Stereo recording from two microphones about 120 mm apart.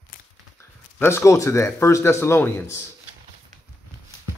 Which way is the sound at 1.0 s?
20° left (ahead or behind).